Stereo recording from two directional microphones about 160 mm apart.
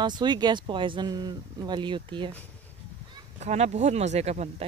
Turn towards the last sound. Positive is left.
turn(degrees=-45)  # may be behind; listen again after turning